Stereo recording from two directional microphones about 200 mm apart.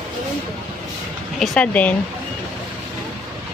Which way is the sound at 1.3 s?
5° left (ahead or behind).